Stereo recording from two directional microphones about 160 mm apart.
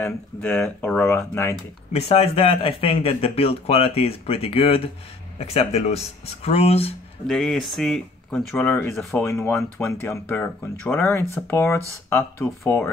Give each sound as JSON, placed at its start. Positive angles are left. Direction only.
{"t": 0.0, "sound": "speech", "side_deg": 10}
{"t": 1.9, "sound": "speech", "side_deg": 40}
{"t": 7.2, "sound": "speech", "side_deg": 5}